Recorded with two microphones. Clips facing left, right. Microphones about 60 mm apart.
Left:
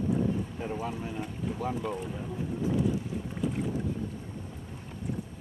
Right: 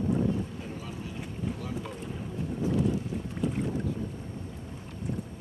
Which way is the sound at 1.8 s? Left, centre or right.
Centre.